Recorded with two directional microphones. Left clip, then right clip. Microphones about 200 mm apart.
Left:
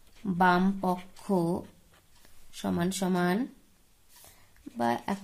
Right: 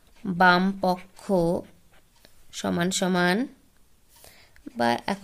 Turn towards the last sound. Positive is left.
turn(degrees=-40)  # may be behind; listen again after turning